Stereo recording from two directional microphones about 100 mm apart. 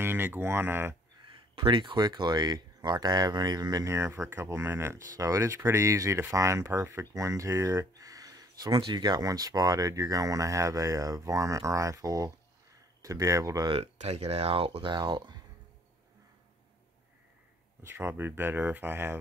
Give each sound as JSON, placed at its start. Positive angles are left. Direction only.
{"t": 0.0, "sound": "speech", "side_deg": -20}
{"t": 1.2, "sound": "speech", "side_deg": -55}
{"t": 3.9, "sound": "speech", "side_deg": -25}
{"t": 13.7, "sound": "speech", "side_deg": -90}
{"t": 17.8, "sound": "speech", "side_deg": -25}